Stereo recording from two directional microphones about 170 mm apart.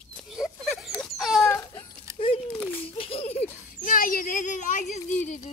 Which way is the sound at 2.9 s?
35° left (ahead or behind).